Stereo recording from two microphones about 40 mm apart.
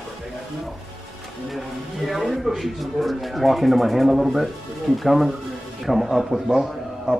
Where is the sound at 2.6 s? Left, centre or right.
Centre.